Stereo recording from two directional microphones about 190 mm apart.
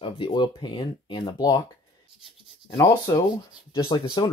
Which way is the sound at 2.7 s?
20° left (ahead or behind).